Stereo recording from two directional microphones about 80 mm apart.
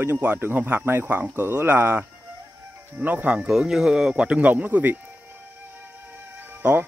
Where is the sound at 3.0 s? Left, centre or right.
Right.